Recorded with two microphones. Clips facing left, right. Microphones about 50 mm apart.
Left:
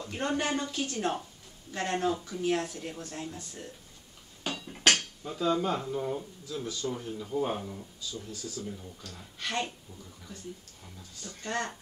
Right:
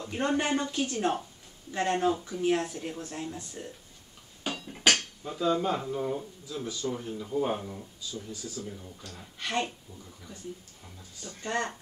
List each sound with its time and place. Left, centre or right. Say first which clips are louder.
0.0 s speech: right 2 dB; centre
11.0 s speech: right 1 dB; centre